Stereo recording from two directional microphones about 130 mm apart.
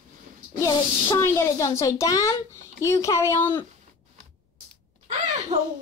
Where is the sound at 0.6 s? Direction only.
25° left (ahead or behind).